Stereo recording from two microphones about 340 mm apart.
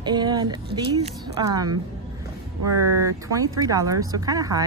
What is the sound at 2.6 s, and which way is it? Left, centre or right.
Speech, right.